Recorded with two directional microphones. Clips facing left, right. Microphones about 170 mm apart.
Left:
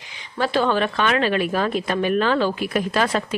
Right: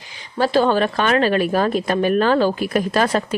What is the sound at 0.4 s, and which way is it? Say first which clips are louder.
A woman's voice: right 4 dB; 35° right (ahead or behind).